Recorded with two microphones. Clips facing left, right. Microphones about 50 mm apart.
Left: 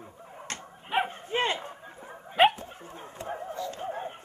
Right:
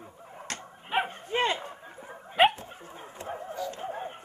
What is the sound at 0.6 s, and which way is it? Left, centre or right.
Dog, centre.